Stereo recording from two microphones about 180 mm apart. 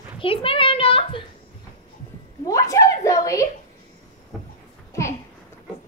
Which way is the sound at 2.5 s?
15° left (ahead or behind).